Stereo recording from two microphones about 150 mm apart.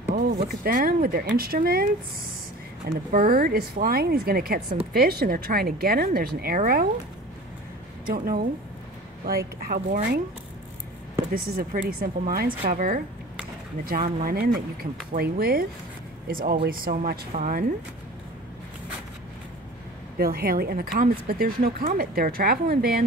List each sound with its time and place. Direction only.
0.7 s speech: 70° right (ahead or behind)
2.9 s speech: 65° right (ahead or behind)
8.1 s speech: 80° right
9.6 s speech: 75° right (ahead or behind)
11.3 s speech: 80° right
12.6 s speech: 70° right (ahead or behind); by 15.6 s 90° right
16.3 s speech: 75° right (ahead or behind)
20.2 s speech: 90° right